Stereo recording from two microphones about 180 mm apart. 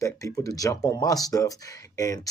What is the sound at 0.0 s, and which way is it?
Speech, 20° left (ahead or behind).